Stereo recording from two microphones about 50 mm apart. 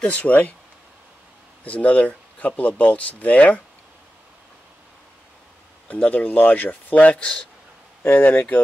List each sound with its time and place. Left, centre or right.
0.0 s speech: left
1.6 s speech: left
5.9 s speech: left
8.0 s speech: left